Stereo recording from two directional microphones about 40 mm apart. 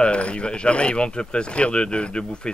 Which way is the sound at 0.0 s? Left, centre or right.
Left.